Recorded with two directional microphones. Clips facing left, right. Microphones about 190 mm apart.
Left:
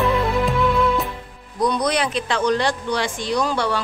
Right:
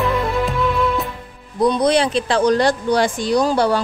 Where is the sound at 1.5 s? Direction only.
25° right (ahead or behind).